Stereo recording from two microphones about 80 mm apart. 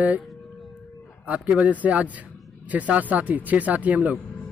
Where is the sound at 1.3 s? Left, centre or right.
Centre.